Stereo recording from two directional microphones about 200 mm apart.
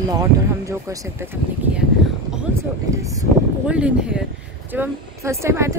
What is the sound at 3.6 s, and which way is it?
Speech, 5° right (ahead or behind).